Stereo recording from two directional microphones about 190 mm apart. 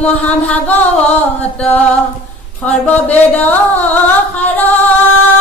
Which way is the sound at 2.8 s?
5° left (ahead or behind).